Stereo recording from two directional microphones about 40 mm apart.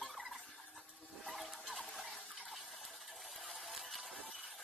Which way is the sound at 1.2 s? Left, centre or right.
Centre.